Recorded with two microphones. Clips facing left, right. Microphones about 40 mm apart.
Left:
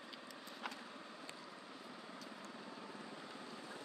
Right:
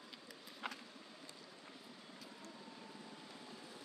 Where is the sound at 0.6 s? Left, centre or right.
Centre.